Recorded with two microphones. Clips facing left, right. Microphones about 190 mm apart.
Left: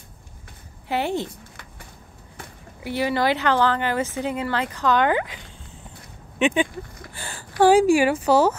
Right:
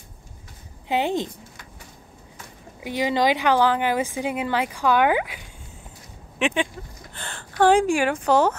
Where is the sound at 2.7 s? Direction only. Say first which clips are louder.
Even; 15° right (ahead or behind).